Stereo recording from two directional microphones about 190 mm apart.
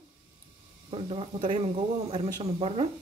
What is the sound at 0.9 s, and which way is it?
Speech, 30° right (ahead or behind).